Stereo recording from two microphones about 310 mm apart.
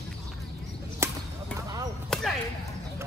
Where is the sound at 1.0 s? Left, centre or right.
Centre.